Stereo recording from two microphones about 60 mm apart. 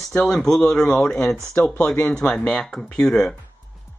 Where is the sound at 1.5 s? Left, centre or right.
Left.